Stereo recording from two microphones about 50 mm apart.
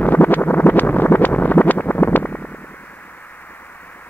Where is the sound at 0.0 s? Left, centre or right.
Left.